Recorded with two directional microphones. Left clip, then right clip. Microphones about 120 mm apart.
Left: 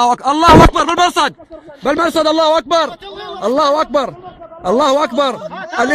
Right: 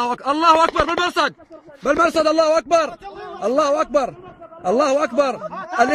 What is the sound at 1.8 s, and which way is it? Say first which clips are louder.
Speech: left 3 dB; 15° left (ahead or behind).